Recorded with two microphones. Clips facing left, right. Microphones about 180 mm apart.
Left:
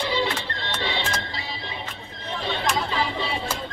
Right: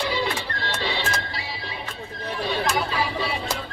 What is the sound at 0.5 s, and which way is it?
Music, 20° left (ahead or behind).